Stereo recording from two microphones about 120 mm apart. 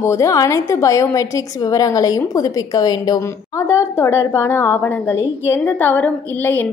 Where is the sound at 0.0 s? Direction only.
25° left (ahead or behind).